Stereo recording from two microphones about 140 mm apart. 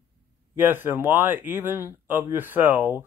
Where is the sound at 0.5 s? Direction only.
15° right (ahead or behind).